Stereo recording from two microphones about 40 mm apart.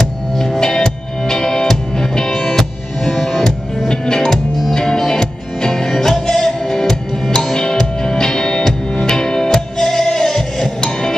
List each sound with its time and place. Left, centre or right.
0.4 s music: centre
3.9 s music: centre